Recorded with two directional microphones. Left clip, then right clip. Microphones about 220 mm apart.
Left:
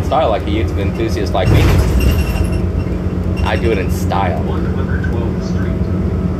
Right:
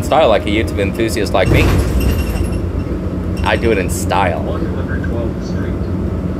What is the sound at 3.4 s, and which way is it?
Speech, 15° right (ahead or behind).